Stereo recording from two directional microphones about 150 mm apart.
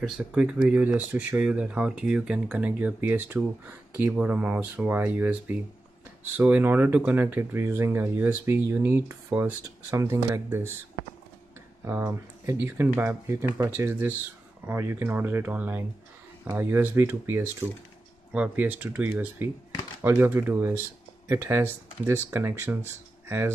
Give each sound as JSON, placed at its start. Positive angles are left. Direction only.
{"t": 0.2, "sound": "speech", "side_deg": -5}
{"t": 11.8, "sound": "speech", "side_deg": -15}